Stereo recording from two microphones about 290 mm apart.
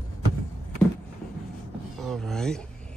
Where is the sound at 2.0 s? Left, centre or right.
Centre.